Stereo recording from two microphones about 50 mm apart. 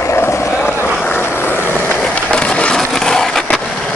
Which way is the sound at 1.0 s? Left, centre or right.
Left.